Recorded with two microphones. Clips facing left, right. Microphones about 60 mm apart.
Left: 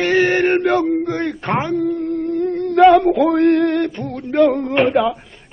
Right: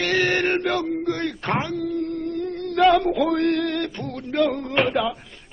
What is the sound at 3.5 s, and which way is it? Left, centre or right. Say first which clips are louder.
A man's voice: left 8 dB; centre.